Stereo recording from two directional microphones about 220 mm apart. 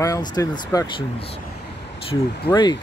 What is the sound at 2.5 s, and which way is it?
Speech, 20° left (ahead or behind).